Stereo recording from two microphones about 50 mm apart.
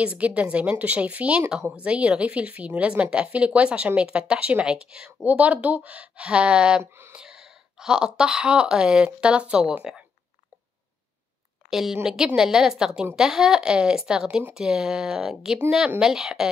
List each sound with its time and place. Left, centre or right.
0.0 s speech: right
5.2 s a woman's voice: right
6.8 s speech: right
7.2 s speech: centre
11.7 s a woman's voice: centre